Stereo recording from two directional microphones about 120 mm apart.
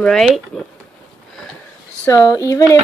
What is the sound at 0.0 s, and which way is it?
Speech, 5° left (ahead or behind).